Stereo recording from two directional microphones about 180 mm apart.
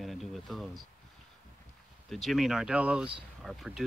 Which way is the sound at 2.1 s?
Centre (ahead or behind).